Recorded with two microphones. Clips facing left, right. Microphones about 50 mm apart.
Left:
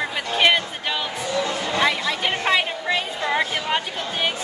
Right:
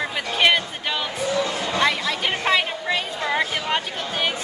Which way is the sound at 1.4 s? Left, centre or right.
Left.